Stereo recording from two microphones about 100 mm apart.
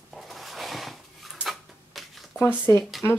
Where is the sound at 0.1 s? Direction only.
Centre (ahead or behind).